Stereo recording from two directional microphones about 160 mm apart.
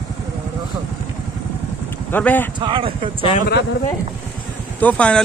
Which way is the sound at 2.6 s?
30° right (ahead or behind).